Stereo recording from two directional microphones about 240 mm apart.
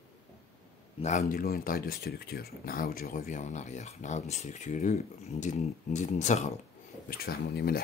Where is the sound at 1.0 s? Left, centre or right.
Left.